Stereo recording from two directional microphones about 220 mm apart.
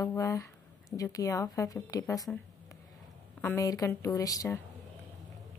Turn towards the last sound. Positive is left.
turn(degrees=15)  # may be behind; listen again after turning